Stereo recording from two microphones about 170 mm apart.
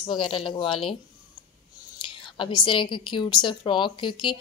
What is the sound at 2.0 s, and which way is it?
A woman's voice, 30° left (ahead or behind).